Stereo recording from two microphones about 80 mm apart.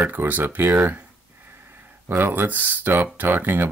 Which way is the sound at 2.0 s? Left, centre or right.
Right.